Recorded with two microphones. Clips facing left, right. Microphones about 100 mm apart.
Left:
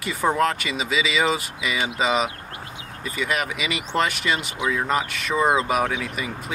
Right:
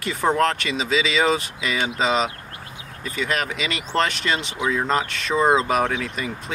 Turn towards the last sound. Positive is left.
turn(degrees=5)  # may be behind; listen again after turning